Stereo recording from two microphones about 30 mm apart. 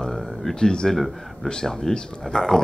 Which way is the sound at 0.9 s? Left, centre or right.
Centre.